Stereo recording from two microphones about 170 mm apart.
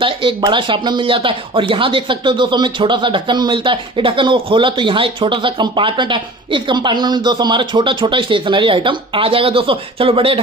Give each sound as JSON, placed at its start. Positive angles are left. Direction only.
{"t": 0.0, "sound": "speech", "side_deg": -30}